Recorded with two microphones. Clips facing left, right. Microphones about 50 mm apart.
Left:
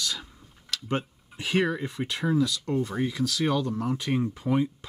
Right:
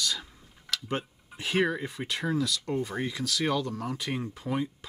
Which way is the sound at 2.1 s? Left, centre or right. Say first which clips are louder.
Left 4 dB; centre.